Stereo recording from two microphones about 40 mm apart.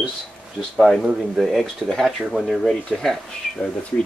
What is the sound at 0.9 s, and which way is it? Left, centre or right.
Speech, centre.